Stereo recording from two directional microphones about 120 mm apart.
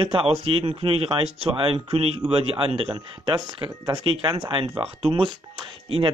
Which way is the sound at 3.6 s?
30° right (ahead or behind).